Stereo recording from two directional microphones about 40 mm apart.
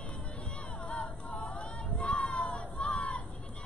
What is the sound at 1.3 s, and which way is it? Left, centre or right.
Music, left.